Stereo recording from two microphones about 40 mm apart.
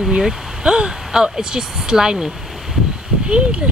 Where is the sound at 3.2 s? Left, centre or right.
Right.